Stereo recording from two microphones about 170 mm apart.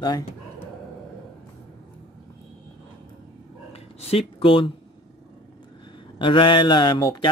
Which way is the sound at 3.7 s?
35° left (ahead or behind).